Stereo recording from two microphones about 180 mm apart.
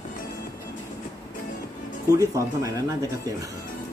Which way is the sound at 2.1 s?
15° right (ahead or behind).